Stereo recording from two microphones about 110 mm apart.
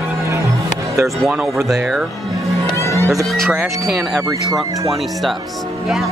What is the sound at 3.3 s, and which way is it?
Speech, centre (ahead or behind).